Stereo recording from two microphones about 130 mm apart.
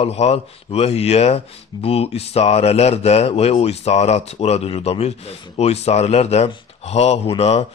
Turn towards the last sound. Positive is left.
turn(degrees=55)  # may be behind; listen again after turning